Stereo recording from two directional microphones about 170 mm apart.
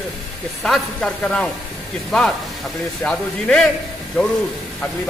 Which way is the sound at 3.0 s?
5° left (ahead or behind).